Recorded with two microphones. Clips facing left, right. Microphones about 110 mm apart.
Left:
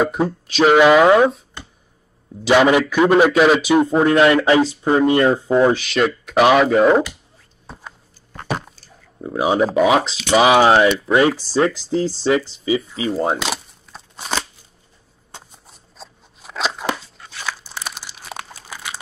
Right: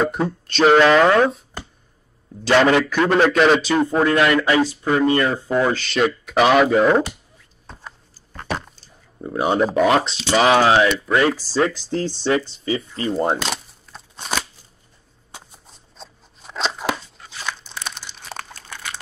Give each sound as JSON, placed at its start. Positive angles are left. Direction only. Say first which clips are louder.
{"t": 0.0, "sound": "a man's voice", "louder": "left 2 dB", "side_deg": 5}
{"t": 2.4, "sound": "a man's voice", "louder": "left 2 dB", "side_deg": 10}
{"t": 5.8, "sound": "speech", "louder": "left 1 dB", "side_deg": 0}
{"t": 7.6, "sound": "a sound", "louder": "left 2 dB", "side_deg": 5}
{"t": 9.2, "sound": "a man's voice", "louder": "left 2 dB", "side_deg": 0}
{"t": 15.6, "sound": "crunch", "louder": "left 1 dB", "side_deg": 5}